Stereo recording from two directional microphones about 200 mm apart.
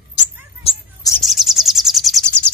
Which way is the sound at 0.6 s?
30° left (ahead or behind).